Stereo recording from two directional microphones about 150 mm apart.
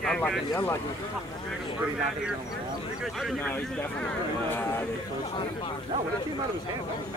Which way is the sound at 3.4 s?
10° left (ahead or behind).